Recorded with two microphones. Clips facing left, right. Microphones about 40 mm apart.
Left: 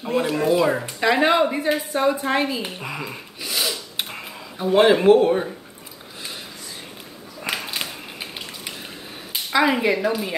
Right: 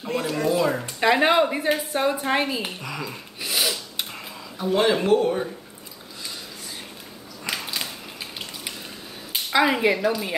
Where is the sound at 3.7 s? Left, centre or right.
Centre.